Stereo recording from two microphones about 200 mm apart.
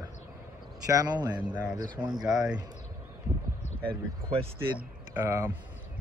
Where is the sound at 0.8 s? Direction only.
20° right (ahead or behind).